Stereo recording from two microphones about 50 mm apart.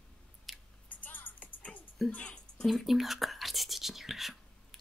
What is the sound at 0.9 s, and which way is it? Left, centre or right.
Music, left.